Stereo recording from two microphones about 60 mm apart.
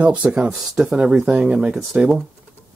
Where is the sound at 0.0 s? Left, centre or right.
Centre.